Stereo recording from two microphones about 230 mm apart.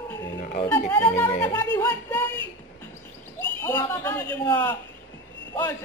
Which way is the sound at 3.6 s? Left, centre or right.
Centre.